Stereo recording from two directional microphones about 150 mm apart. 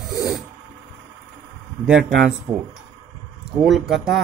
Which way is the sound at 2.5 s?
25° right (ahead or behind).